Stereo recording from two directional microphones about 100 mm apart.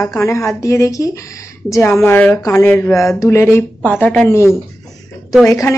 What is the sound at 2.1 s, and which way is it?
Speech, 15° left (ahead or behind).